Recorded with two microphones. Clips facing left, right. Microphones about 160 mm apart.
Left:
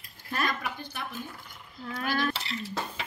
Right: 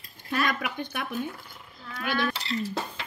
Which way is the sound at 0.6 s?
60° right (ahead or behind).